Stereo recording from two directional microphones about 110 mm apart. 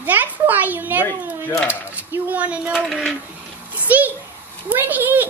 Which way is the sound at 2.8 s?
Centre (ahead or behind).